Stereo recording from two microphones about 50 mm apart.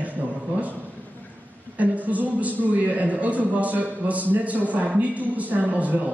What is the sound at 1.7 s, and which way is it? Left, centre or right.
A man's voice, right.